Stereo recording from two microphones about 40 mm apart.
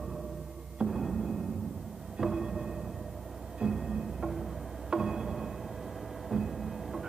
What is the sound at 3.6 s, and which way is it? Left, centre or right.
Music, centre.